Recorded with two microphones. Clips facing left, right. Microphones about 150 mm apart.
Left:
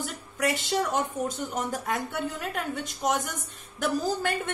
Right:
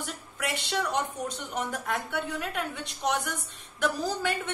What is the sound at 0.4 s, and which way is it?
A woman's voice, 40° left (ahead or behind).